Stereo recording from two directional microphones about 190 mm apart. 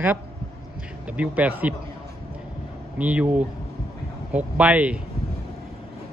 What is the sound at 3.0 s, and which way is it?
Speech, 10° right (ahead or behind).